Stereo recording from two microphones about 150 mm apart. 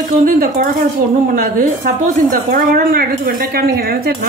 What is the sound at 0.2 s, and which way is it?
Speech, 70° right (ahead or behind).